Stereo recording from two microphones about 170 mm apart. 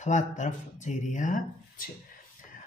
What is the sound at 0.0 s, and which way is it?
A man's voice, 45° left (ahead or behind).